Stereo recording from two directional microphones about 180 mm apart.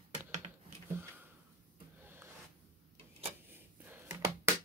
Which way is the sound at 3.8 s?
10° right (ahead or behind).